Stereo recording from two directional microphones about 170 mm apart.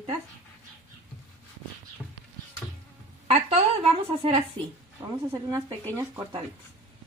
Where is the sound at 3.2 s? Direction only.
35° right (ahead or behind).